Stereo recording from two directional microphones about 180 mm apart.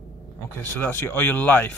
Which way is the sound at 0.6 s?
15° left (ahead or behind).